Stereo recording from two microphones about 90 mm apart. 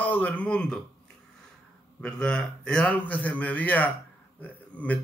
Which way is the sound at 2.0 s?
10° left (ahead or behind).